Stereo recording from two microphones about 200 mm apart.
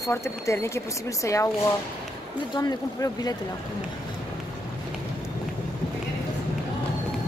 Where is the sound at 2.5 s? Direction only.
20° left (ahead or behind).